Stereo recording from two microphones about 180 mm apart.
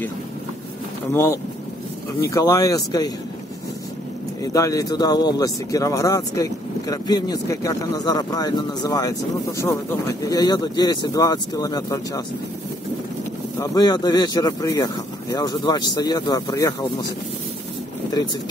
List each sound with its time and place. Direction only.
1.1 s speech: 15° left (ahead or behind)
4.4 s speech: 20° left (ahead or behind)
13.6 s speech: 20° left (ahead or behind)